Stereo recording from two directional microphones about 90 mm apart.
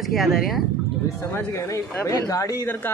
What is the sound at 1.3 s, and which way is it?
Speech, 30° left (ahead or behind).